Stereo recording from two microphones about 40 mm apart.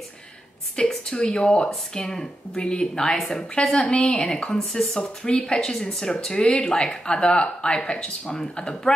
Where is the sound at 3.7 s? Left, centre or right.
Left.